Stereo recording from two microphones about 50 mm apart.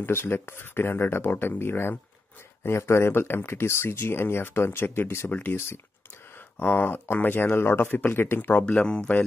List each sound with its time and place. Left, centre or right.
0.0 s speech: left
2.6 s speech: left
5.3 s speech: left
6.6 s speech: left